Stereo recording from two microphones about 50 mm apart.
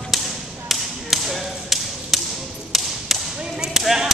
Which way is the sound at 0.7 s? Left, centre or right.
Centre.